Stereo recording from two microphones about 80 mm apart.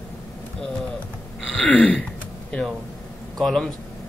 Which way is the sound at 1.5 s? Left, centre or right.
Centre.